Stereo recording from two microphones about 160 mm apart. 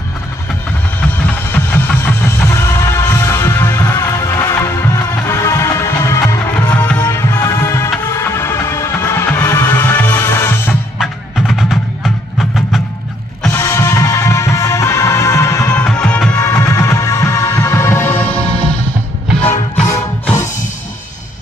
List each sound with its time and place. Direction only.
1.2 s music: 10° left (ahead or behind)
11.0 s music: centre (ahead or behind)
13.5 s music: 15° left (ahead or behind)
16.3 s music: 15° left (ahead or behind)